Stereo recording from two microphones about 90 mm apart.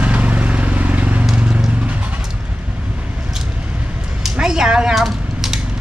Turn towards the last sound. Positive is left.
turn(degrees=-5)  # may be behind; listen again after turning